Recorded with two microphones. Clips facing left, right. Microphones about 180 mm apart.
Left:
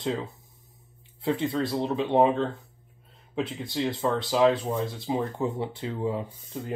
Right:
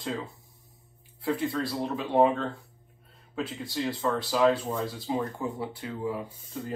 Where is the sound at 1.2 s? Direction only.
25° left (ahead or behind).